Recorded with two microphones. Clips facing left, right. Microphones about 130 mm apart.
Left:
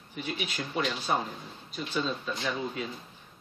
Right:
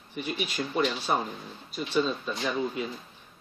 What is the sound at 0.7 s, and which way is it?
Speech, 5° right (ahead or behind).